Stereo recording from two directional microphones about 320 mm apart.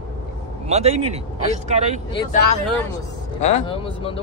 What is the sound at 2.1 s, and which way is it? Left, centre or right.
Speech, centre.